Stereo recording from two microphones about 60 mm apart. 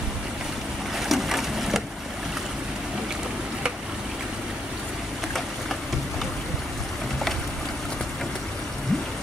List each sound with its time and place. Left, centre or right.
0.9 s boat: centre